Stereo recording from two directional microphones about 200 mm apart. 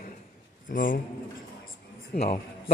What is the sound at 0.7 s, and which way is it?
Speech, 40° left (ahead or behind).